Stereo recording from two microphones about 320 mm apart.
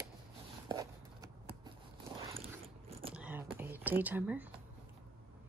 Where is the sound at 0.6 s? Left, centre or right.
Centre.